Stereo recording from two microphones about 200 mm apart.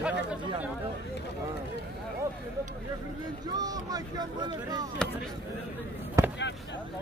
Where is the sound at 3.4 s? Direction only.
20° right (ahead or behind).